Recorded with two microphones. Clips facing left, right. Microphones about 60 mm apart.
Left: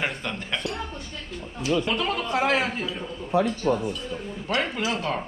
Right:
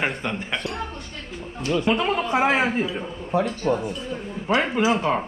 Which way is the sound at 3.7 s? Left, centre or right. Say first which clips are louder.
Right 3 dB; right.